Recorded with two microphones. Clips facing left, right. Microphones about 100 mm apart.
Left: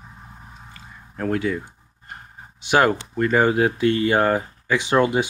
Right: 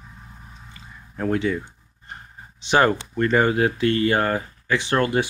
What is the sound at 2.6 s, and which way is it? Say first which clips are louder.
Speech: even; 5° left (ahead or behind).